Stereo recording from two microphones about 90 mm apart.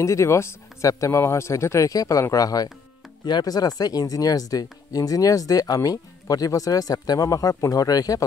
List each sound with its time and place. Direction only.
0.0 s speech: 35° left (ahead or behind)